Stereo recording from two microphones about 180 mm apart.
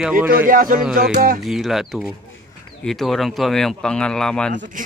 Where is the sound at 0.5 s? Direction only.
50° right (ahead or behind).